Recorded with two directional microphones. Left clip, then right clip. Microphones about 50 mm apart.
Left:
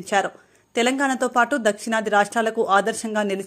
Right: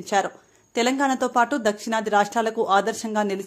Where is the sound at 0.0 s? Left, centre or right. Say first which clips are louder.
Left 1 dB; left.